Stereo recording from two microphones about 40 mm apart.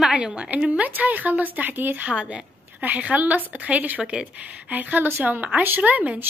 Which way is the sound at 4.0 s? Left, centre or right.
Right.